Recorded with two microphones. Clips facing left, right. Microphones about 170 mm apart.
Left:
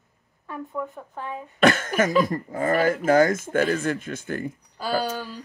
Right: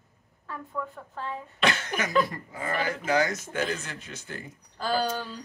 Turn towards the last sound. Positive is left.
turn(degrees=5)  # may be behind; listen again after turning